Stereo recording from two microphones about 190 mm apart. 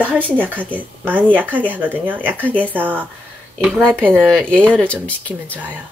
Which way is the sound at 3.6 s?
5° left (ahead or behind).